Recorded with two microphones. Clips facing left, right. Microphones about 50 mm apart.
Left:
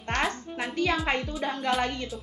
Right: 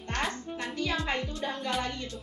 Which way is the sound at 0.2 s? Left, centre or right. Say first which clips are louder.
Left 4 dB; centre.